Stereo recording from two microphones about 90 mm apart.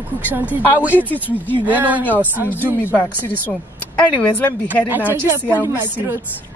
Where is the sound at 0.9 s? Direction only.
20° left (ahead or behind).